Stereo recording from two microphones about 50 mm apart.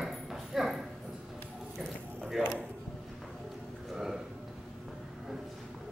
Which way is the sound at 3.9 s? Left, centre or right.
Centre.